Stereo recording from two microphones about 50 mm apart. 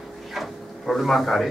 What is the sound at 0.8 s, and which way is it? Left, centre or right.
Speech, centre.